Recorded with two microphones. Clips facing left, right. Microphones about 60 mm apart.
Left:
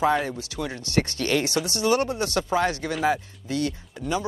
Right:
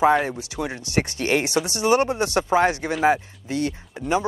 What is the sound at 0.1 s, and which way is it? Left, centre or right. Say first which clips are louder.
Speech: right 4 dB; centre.